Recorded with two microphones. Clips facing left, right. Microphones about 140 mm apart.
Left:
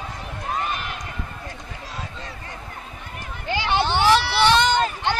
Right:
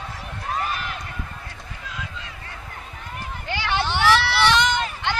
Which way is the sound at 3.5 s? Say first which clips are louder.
Left 3 dB; 25° left (ahead or behind).